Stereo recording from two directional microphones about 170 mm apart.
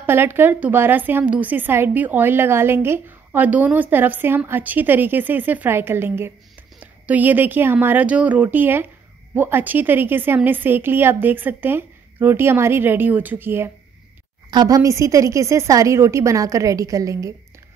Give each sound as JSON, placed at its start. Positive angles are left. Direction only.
{"t": 0.0, "sound": "a woman's voice", "side_deg": -15}